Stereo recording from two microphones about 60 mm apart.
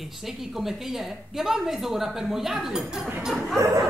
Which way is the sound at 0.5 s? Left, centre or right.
Centre.